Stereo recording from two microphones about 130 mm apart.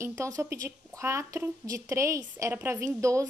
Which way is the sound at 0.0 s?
20° right (ahead or behind).